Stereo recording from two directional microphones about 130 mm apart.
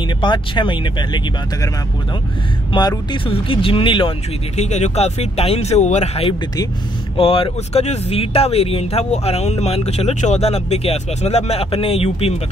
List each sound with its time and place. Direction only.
0.2 s speech: 40° left (ahead or behind)
3.1 s speech: 45° left (ahead or behind)
4.6 s speech: 60° left (ahead or behind)
7.2 s speech: 45° left (ahead or behind)